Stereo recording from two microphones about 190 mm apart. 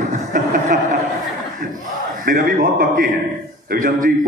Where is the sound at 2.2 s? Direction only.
45° right (ahead or behind).